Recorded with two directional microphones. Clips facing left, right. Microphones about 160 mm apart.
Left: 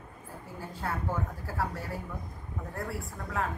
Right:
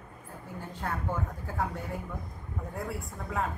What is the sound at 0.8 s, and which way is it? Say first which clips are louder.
A man's voice: even; 5° left (ahead or behind).